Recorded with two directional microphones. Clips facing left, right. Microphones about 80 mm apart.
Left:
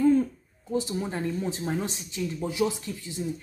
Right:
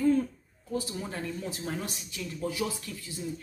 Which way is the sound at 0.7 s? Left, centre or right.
Left.